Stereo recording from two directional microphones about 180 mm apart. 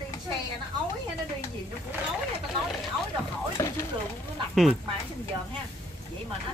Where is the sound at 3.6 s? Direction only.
15° left (ahead or behind).